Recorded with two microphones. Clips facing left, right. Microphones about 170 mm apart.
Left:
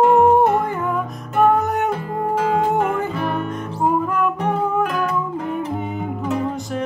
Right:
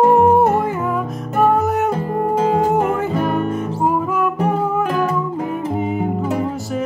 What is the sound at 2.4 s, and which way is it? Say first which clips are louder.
Music: right 2 dB; 40° right (ahead or behind).